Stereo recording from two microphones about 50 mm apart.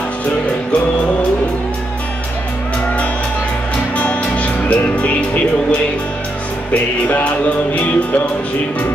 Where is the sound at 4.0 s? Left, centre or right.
Left.